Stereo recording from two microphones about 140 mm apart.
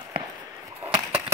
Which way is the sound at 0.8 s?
15° right (ahead or behind).